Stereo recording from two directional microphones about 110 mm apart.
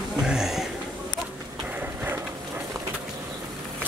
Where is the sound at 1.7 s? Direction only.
15° right (ahead or behind).